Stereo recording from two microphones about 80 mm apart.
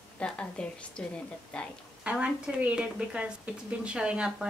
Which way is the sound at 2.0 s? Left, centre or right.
Centre.